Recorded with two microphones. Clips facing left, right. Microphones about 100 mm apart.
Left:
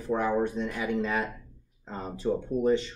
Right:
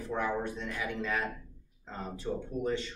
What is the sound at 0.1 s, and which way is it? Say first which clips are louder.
Speech: left 7 dB; 25° left (ahead or behind).